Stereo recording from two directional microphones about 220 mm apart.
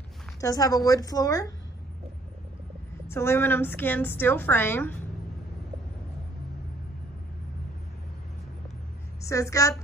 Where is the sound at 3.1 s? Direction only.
10° left (ahead or behind).